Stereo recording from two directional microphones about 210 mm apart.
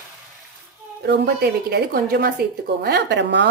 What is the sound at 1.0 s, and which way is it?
Speech, 50° right (ahead or behind).